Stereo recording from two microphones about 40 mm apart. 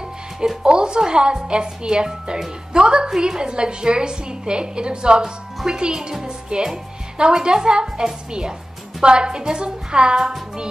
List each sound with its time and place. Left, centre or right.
0.7 s a woman's voice: right